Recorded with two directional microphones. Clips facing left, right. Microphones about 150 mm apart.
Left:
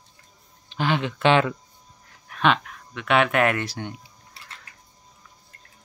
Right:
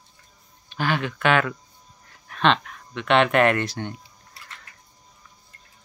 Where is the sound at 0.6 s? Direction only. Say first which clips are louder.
Left 1 dB; 20° left (ahead or behind).